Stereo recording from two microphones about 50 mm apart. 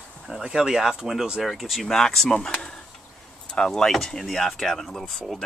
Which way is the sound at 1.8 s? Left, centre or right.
Centre.